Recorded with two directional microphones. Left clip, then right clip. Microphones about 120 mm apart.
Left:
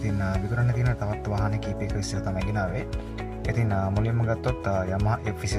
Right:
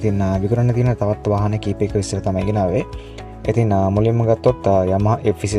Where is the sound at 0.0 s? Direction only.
35° right (ahead or behind).